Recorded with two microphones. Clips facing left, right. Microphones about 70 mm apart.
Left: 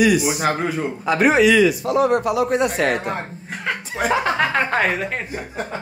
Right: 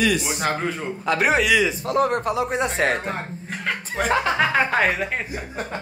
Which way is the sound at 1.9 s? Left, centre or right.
Right.